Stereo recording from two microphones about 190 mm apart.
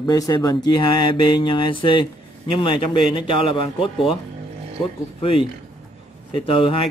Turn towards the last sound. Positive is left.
turn(degrees=25)  # may be behind; listen again after turning